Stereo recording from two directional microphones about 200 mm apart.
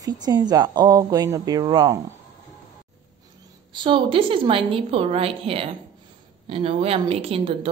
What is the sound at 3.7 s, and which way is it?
A woman's voice, 25° right (ahead or behind).